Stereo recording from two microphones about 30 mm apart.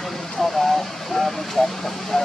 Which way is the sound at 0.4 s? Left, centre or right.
Centre.